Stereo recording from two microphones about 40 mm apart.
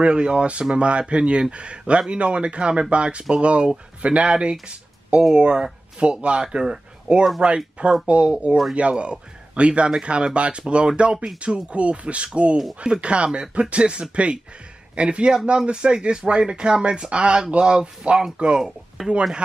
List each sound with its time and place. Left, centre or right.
0.0 s speech: right
19.0 s speech: centre